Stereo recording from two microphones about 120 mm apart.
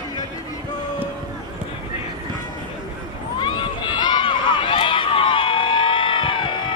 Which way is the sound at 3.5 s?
40° left (ahead or behind).